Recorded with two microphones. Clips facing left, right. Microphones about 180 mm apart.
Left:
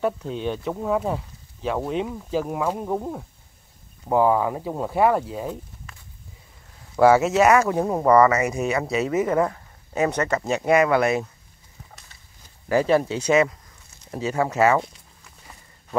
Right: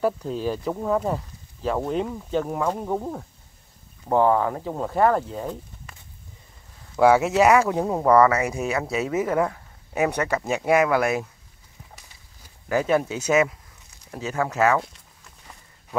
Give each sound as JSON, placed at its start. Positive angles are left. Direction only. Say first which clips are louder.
{"t": 0.0, "sound": "speech", "louder": "right 1 dB", "side_deg": 0}
{"t": 7.0, "sound": "speech", "louder": "left 1 dB", "side_deg": -10}
{"t": 7.8, "sound": "speech", "louder": "left 1 dB", "side_deg": 0}
{"t": 12.6, "sound": "speech", "louder": "left 2 dB", "side_deg": 0}